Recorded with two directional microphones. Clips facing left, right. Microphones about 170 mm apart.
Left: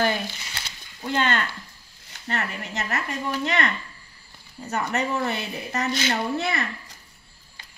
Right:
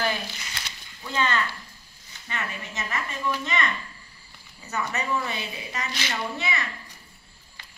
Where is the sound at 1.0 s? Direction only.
70° left (ahead or behind).